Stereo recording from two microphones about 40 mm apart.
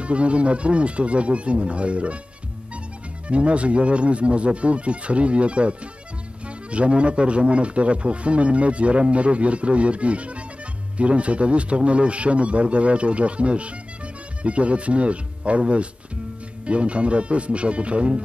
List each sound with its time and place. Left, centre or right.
0.0 s speech: right
3.3 s speech: right